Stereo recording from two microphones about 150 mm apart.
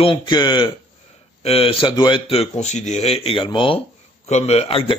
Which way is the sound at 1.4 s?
40° left (ahead or behind).